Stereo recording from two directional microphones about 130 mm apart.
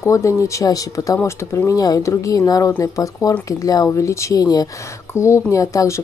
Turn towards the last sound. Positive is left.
turn(degrees=25)  # may be behind; listen again after turning